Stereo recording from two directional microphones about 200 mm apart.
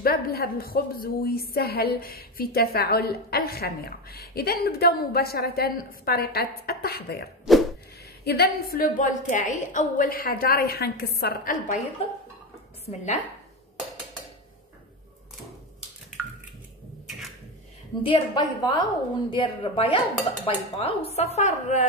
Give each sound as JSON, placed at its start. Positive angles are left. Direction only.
{"t": 0.0, "sound": "a woman's voice", "side_deg": 50}
{"t": 7.5, "sound": "a sound", "side_deg": 0}
{"t": 8.2, "sound": "a woman's voice", "side_deg": 50}
{"t": 12.8, "sound": "a woman's voice", "side_deg": 35}
{"t": 18.0, "sound": "a woman's voice", "side_deg": 25}